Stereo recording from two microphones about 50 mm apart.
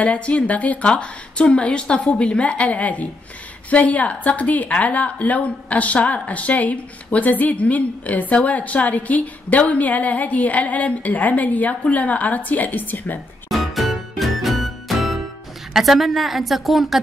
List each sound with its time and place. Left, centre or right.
0.0 s a woman's voice: left
0.8 s a woman's voice: left
13.5 s music: centre
15.7 s a woman's voice: centre